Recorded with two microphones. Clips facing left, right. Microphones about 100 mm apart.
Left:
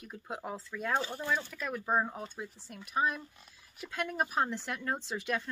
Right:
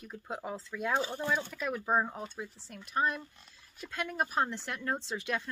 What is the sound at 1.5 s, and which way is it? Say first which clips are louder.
Speech: right 1 dB; 5° right (ahead or behind).